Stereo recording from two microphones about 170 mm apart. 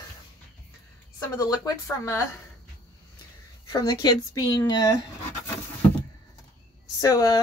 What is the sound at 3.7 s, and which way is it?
Speech, 25° left (ahead or behind).